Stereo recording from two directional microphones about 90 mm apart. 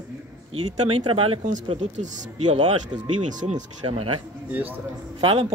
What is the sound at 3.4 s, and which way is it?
Speech, 90° right.